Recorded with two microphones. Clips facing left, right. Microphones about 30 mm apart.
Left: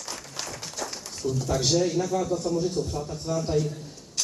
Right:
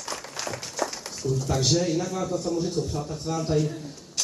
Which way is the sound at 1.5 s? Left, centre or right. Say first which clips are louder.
Left 1 dB; centre.